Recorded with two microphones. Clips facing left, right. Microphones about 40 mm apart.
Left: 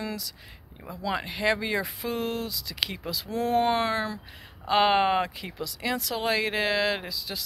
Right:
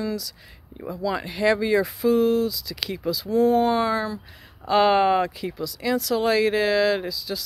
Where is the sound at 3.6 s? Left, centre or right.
Left.